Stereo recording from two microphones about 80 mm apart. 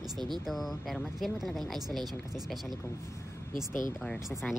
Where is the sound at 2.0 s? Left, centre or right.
Right.